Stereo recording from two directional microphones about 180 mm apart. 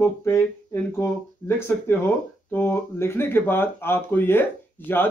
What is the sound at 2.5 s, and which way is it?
Speech, 15° left (ahead or behind).